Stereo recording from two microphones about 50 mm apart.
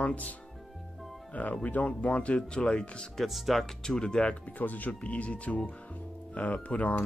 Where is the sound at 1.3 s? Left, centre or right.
Left.